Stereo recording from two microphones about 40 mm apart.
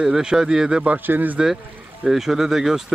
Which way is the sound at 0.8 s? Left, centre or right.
Right.